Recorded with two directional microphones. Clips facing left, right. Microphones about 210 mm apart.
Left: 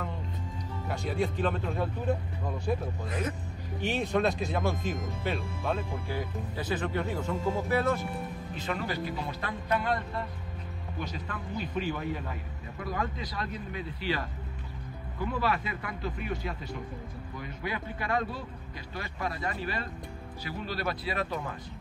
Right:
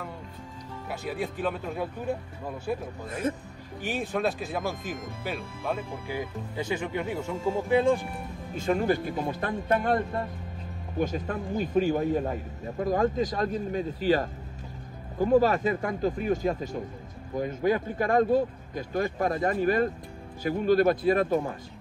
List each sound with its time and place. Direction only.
0.8 s speech: 5° right (ahead or behind)
3.9 s speech: 5° right (ahead or behind)
8.5 s speech: 45° right (ahead or behind)